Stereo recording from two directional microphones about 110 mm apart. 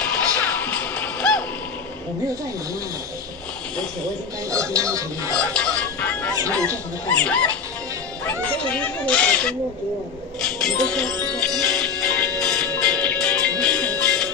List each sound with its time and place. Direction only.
0.0 s music: 10° left (ahead or behind)
4.5 s speech: 30° right (ahead or behind)
5.3 s music: 10° left (ahead or behind)
7.1 s speech: 10° left (ahead or behind)
10.4 s music: 5° left (ahead or behind)